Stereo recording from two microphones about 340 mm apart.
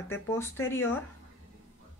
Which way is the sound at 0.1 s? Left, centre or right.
Centre.